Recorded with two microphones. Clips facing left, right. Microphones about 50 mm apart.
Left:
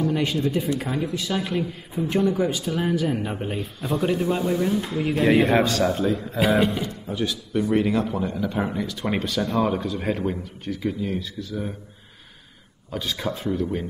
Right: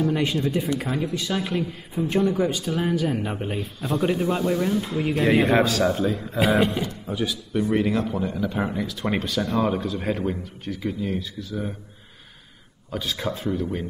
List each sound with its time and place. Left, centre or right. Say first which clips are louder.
0.0 s a man's voice: even; centre
4.0 s a man's voice: even; right
4.5 s a man's voice: even; centre
12.9 s a man's voice: even; centre